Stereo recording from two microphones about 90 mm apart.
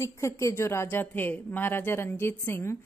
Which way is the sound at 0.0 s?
35° left (ahead or behind).